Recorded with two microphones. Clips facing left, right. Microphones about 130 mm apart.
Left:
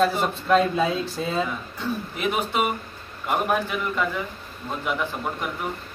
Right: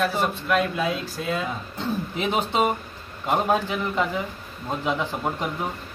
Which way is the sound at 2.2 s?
30° right (ahead or behind).